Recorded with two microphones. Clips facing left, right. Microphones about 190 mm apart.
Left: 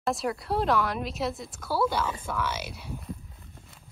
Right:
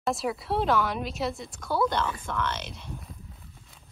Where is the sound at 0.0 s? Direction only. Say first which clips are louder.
Even; centre (ahead or behind).